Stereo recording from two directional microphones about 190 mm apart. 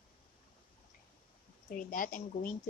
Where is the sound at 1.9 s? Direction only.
45° left (ahead or behind).